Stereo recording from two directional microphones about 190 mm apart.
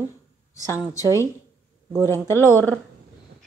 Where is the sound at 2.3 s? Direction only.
10° left (ahead or behind).